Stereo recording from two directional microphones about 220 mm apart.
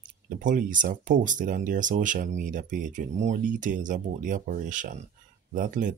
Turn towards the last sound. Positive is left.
turn(degrees=-35)  # may be behind; listen again after turning